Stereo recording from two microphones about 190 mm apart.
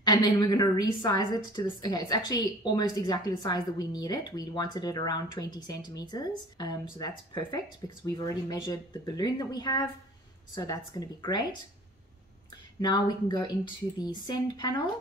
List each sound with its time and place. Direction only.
0.0 s a woman's voice: 20° left (ahead or behind)
12.8 s a woman's voice: 20° left (ahead or behind)